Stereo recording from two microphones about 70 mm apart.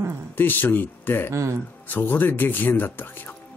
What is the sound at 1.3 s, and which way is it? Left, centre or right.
Speech, right.